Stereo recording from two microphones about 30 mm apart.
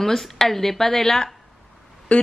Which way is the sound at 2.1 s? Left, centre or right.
Left.